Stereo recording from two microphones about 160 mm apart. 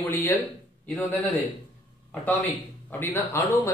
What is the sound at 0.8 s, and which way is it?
A man's voice, 10° left (ahead or behind).